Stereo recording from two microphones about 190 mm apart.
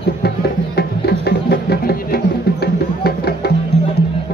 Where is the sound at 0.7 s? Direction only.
60° left (ahead or behind).